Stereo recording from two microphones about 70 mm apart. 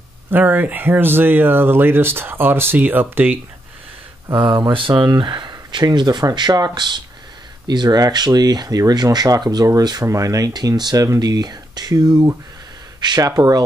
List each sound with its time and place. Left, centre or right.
0.3 s speech: right
4.6 s speech: right
10.0 s speech: right
10.8 s speech: right
13.0 s speech: right
13.4 s speech: right